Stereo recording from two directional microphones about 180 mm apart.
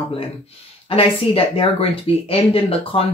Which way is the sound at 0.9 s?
30° left (ahead or behind).